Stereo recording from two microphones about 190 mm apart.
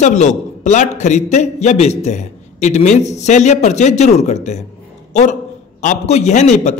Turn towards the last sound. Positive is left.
turn(degrees=40)  # may be behind; listen again after turning